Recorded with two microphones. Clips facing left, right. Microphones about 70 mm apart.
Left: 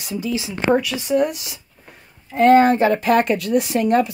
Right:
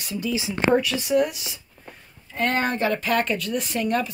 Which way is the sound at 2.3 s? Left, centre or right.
Left.